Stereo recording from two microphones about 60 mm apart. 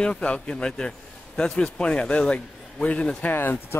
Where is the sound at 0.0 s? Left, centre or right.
Centre.